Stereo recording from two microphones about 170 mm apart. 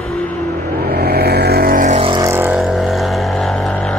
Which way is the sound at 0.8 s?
65° right (ahead or behind).